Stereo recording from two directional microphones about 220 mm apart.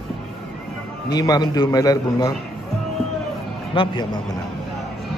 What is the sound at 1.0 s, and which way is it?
Speech, 15° left (ahead or behind).